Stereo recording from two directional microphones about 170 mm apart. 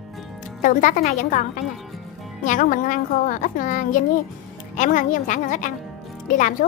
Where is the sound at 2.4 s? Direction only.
50° left (ahead or behind).